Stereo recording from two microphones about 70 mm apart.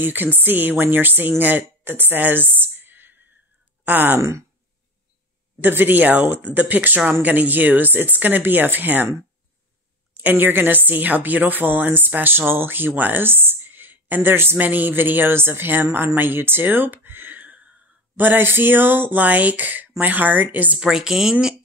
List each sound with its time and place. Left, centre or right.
0.0 s a woman's voice: right
1.4 s a sound: right
3.8 s a woman's voice: right
4.2 s speech: right
5.6 s a woman's voice: right
10.1 s a woman's voice: right
20.8 s a woman's voice: centre